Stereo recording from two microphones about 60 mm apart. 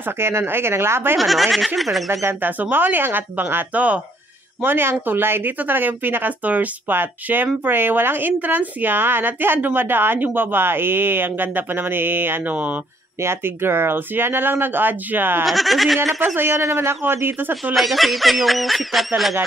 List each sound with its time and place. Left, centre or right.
0.0 s speech: right
1.1 s speech: centre
2.0 s a woman's voice: right
15.4 s speech: centre
16.3 s a woman's voice: right
17.7 s speech: centre